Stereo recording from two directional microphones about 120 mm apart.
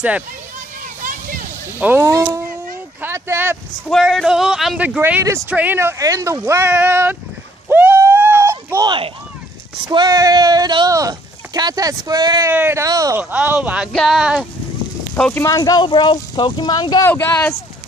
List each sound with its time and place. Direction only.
1.8 s speech: 15° right (ahead or behind)
2.1 s speech: 25° right (ahead or behind)
3.9 s a man's voice: centre (ahead or behind); by 7.2 s 15° right (ahead or behind)
7.6 s a sound: 15° right (ahead or behind)
8.8 s speech: 45° right (ahead or behind)
12.4 s speech: 20° right (ahead or behind)
12.8 s speech: 30° right (ahead or behind)
13.2 s a man's voice: 10° right (ahead or behind)
15.1 s speech: 5° left (ahead or behind)
15.4 s speech: 30° left (ahead or behind)
17.0 s speech: 15° left (ahead or behind)